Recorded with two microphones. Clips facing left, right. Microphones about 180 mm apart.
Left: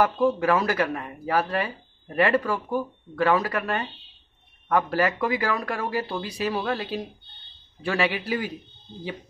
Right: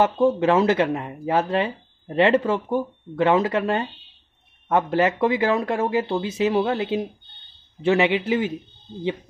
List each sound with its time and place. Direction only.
0.0 s speech: 25° right (ahead or behind)